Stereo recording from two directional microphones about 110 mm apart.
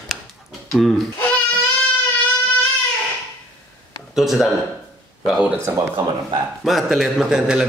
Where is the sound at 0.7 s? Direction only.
Centre (ahead or behind).